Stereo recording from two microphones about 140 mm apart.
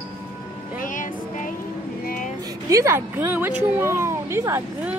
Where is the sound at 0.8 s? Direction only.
65° left (ahead or behind).